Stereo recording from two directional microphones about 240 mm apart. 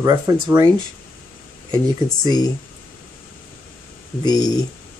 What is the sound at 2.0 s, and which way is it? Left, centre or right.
Speech, centre.